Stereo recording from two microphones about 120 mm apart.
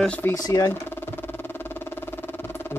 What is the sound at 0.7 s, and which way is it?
Vehicle, 20° left (ahead or behind).